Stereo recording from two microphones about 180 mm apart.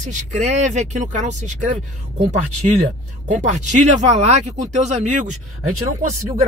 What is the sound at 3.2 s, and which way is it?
Speech, 45° right (ahead or behind).